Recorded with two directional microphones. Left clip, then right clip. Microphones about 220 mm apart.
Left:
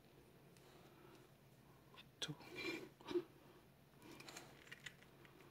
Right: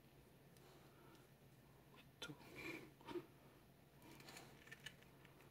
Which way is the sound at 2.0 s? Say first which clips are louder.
Left 6 dB; 30° left (ahead or behind).